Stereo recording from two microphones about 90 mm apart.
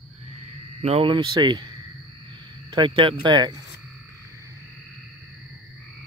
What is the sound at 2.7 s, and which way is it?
Speech, 65° right (ahead or behind).